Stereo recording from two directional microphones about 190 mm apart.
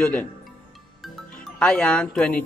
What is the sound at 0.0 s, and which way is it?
Speech, 5° left (ahead or behind).